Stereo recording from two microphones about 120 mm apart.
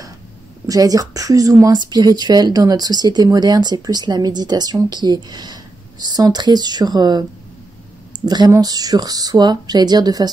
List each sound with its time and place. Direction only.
0.7 s speech: 30° right (ahead or behind)
8.3 s speech: 35° right (ahead or behind)